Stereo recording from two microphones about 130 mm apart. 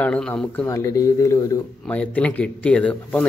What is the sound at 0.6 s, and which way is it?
Speech, 25° left (ahead or behind).